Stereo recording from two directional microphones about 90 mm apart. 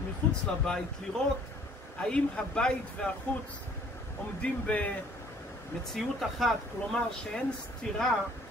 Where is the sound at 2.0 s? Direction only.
15° left (ahead or behind).